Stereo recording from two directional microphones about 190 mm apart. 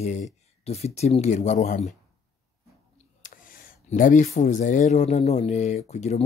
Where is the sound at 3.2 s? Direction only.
45° left (ahead or behind).